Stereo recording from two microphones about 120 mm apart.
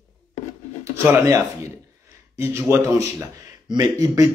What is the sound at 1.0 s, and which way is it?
Mantra, 20° right (ahead or behind).